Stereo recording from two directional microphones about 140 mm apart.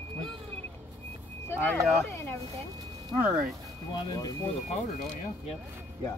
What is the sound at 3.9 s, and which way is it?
Speech, 30° left (ahead or behind).